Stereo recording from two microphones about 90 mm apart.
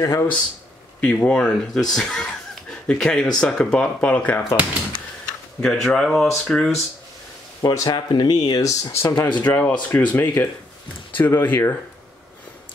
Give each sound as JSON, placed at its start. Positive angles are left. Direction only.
{"t": 0.0, "sound": "speech", "side_deg": 30}
{"t": 1.0, "sound": "speech", "side_deg": 10}
{"t": 5.6, "sound": "speech", "side_deg": 5}
{"t": 7.6, "sound": "speech", "side_deg": 50}
{"t": 8.5, "sound": "speech", "side_deg": 40}
{"t": 9.4, "sound": "speech", "side_deg": 20}